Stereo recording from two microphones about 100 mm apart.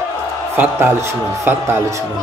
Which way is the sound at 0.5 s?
25° right (ahead or behind).